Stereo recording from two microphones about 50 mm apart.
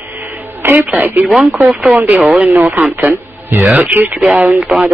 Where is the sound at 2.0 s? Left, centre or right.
Right.